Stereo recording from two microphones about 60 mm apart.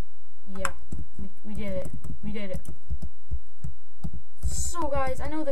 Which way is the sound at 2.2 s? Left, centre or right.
Centre.